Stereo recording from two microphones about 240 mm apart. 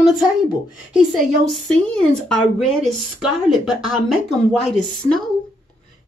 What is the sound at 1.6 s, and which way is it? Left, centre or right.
Speech, centre.